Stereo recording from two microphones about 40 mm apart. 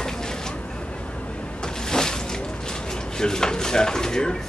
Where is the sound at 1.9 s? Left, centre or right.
Centre.